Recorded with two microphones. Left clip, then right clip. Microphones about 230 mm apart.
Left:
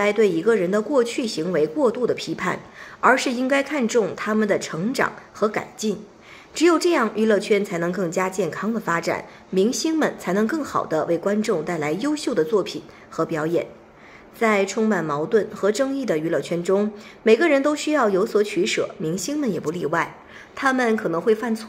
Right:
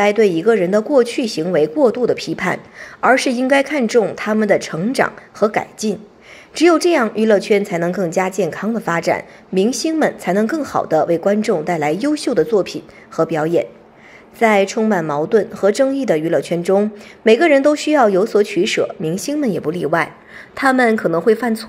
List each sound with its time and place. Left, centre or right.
0.0 s a woman's voice: centre